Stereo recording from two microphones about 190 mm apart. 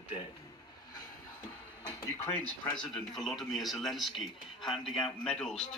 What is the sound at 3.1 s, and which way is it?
A man's voice, centre (ahead or behind).